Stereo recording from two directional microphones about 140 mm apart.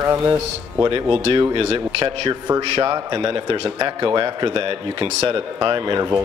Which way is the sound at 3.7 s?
25° right (ahead or behind).